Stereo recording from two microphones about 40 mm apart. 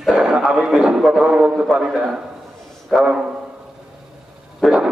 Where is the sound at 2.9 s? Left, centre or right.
Centre.